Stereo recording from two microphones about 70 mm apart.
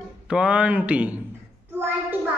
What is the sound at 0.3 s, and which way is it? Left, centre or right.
Speech, centre.